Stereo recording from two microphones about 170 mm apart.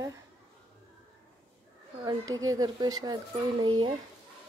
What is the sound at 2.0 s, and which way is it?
Speech, 20° right (ahead or behind).